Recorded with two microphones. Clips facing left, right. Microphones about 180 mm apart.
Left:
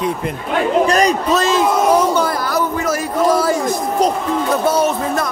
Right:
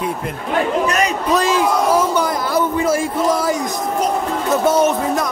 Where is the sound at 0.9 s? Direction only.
35° left (ahead or behind).